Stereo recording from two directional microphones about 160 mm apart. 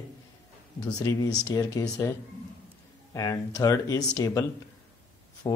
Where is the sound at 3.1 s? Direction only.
20° left (ahead or behind).